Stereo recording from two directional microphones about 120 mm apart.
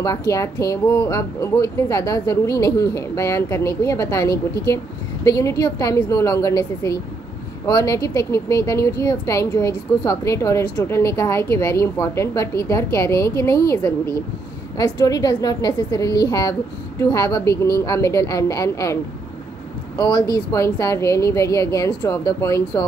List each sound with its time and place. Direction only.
0.0 s a woman's voice: 30° left (ahead or behind)
0.8 s speech: 15° left (ahead or behind)
1.1 s a woman's voice: 30° left (ahead or behind)
20.0 s a woman's voice: 35° left (ahead or behind)